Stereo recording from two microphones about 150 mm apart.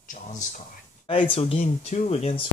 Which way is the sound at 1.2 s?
40° left (ahead or behind).